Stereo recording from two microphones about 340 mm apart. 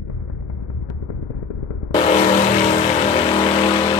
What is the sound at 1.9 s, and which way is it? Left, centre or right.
Vehicle, centre.